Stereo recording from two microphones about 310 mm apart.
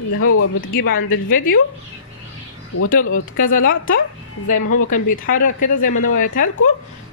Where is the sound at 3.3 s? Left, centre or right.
Left.